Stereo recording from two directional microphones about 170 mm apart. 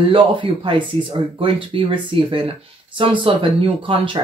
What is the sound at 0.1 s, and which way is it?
Speech, 30° right (ahead or behind).